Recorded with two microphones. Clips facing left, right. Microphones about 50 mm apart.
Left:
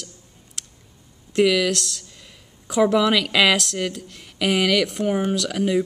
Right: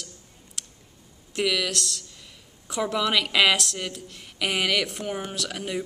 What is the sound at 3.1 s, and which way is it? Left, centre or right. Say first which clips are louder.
Speech: left 3 dB; centre.